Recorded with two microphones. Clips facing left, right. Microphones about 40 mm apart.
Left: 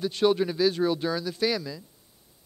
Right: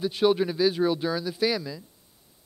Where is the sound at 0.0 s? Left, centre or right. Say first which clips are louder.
Right 1 dB; centre.